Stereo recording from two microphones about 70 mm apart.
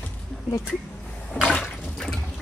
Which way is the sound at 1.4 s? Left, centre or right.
Centre.